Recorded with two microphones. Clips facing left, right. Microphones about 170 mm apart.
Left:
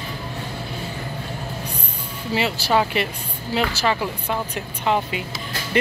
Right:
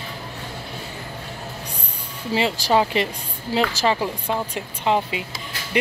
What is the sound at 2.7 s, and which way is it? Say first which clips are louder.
A woman's voice: right 1 dB; 25° right (ahead or behind).